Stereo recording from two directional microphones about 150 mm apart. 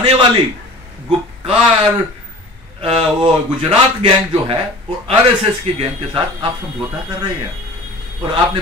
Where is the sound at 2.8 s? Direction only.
35° right (ahead or behind).